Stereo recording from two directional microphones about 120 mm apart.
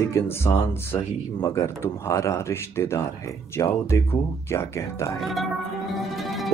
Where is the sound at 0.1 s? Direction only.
25° left (ahead or behind).